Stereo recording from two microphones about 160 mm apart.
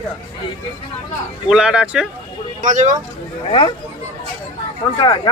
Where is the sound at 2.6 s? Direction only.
50° right (ahead or behind).